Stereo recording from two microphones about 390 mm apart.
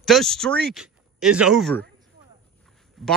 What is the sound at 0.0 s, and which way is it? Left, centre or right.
Speech, centre.